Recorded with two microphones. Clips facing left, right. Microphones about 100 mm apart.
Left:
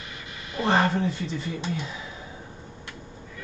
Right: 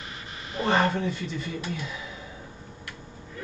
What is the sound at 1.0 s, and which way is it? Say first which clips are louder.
Speech: left 2 dB; 30° left (ahead or behind).